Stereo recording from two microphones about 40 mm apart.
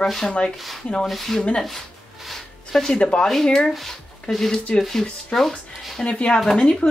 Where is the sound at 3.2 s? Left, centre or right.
Centre.